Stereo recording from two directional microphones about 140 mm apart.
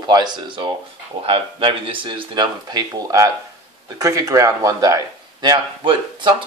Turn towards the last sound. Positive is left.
turn(degrees=-30)  # may be behind; listen again after turning